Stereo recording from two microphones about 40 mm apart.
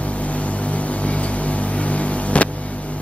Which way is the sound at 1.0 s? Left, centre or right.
Left.